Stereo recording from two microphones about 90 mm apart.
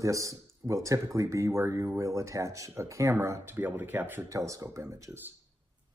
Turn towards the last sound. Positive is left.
turn(degrees=-35)  # may be behind; listen again after turning